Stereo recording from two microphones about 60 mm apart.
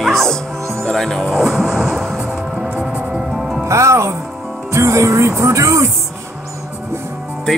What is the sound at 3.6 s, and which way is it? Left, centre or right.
Speech, right.